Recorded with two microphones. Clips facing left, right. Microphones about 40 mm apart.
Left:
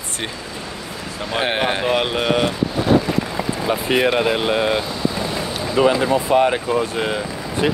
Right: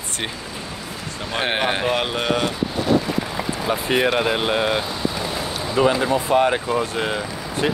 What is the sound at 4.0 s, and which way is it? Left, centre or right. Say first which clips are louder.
Speech: left 2 dB; left.